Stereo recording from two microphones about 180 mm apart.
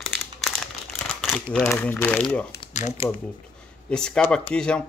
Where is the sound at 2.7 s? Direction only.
40° left (ahead or behind).